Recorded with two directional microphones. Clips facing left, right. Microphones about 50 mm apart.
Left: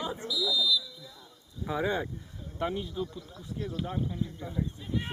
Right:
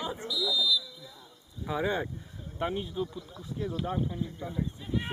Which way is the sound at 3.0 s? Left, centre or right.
Centre.